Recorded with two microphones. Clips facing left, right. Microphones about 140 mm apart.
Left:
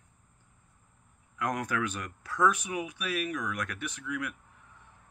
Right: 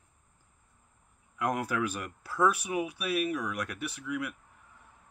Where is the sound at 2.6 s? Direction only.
35° right (ahead or behind).